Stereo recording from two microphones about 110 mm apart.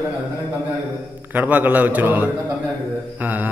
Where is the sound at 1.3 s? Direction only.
15° right (ahead or behind).